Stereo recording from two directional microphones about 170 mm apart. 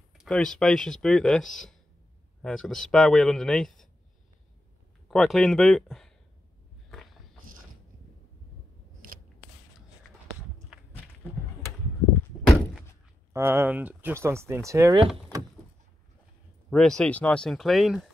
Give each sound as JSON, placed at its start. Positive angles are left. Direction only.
{"t": 0.2, "sound": "speech", "side_deg": 5}
{"t": 5.0, "sound": "speech", "side_deg": 0}
{"t": 13.3, "sound": "speech", "side_deg": -15}
{"t": 16.7, "sound": "speech", "side_deg": 5}